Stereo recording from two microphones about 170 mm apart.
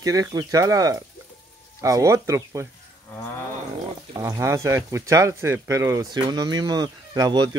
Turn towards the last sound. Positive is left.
turn(degrees=-25)  # may be behind; listen again after turning